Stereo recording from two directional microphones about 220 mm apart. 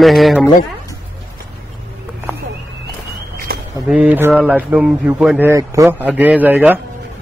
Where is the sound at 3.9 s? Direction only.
5° right (ahead or behind).